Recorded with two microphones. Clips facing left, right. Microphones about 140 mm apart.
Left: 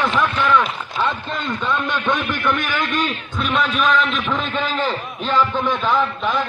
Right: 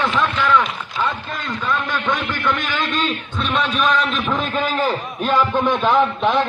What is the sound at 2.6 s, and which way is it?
Speech, 20° right (ahead or behind).